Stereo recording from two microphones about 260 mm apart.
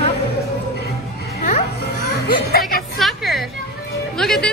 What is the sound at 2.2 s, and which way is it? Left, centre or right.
Speech, left.